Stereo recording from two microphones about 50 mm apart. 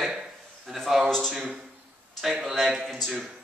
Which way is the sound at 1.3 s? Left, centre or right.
Centre.